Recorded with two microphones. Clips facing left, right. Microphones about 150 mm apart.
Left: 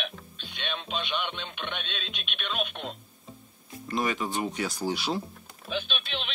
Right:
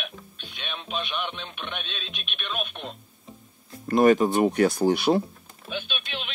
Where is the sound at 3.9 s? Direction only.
50° right (ahead or behind).